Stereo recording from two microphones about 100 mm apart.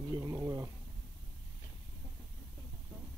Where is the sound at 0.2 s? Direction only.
35° right (ahead or behind).